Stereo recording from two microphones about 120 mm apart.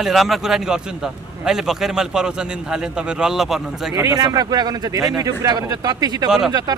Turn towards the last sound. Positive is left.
turn(degrees=-5)  # may be behind; listen again after turning